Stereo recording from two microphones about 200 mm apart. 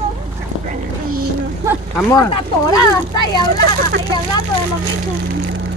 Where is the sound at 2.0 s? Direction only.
20° left (ahead or behind).